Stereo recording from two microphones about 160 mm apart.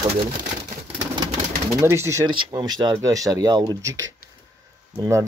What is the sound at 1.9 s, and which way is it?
Speech, 15° right (ahead or behind).